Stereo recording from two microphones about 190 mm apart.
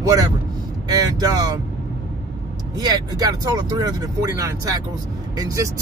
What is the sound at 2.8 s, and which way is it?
Speech, 20° right (ahead or behind).